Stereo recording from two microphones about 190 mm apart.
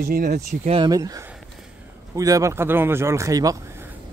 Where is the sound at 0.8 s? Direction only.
20° right (ahead or behind).